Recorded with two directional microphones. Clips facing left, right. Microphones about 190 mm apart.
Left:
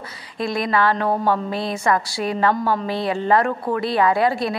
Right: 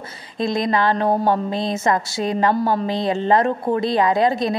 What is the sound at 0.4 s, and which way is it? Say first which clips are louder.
A woman's voice: right 1 dB; 20° right (ahead or behind).